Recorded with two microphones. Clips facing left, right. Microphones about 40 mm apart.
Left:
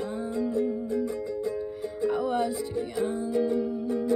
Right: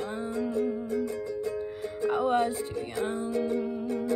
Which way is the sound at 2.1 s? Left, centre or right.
Right.